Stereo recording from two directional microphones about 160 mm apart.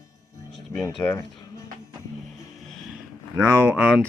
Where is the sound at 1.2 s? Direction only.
25° left (ahead or behind).